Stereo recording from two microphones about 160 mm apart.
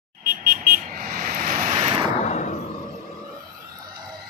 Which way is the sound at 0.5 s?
60° right (ahead or behind).